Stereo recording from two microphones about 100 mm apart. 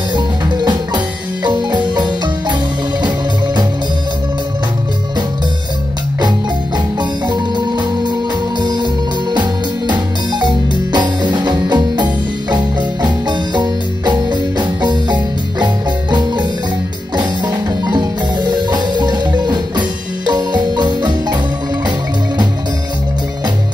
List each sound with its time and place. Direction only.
0.1 s music: 50° right (ahead or behind)
7.0 s music: 45° right (ahead or behind)
15.6 s marimba: 50° right (ahead or behind)